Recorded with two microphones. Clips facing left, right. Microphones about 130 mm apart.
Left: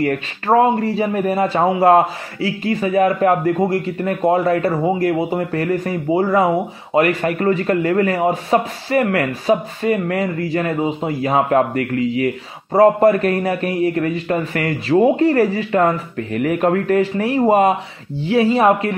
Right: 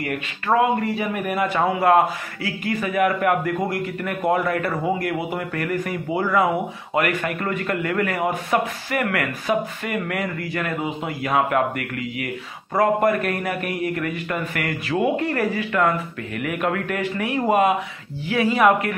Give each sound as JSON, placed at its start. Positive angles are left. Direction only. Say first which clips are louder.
{"t": 0.0, "sound": "a man's voice", "louder": "left 7 dB", "side_deg": 40}